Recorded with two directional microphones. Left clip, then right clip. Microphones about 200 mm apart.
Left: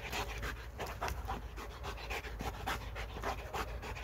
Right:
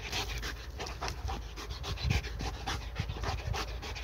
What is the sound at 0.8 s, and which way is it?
Dog, 15° left (ahead or behind).